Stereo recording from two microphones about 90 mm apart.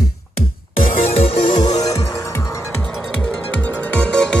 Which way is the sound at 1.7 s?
40° left (ahead or behind).